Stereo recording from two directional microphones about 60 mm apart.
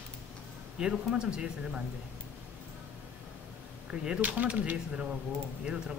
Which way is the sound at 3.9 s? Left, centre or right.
Right.